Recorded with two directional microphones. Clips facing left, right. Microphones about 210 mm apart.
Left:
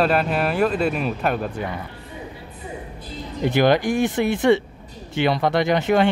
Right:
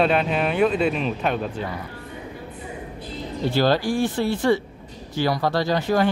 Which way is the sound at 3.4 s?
15° left (ahead or behind).